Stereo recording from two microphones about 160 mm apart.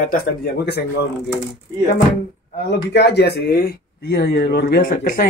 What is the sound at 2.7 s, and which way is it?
Speech, 90° left.